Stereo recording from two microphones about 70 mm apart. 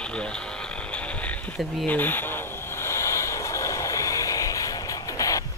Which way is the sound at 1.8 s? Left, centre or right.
Left.